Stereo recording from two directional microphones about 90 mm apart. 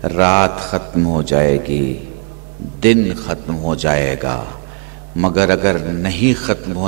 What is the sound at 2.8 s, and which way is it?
Speech, 15° right (ahead or behind).